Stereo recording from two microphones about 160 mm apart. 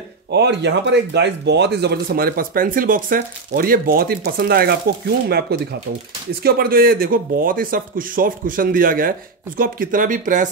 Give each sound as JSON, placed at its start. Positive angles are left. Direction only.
{"t": 0.3, "sound": "speech", "side_deg": -90}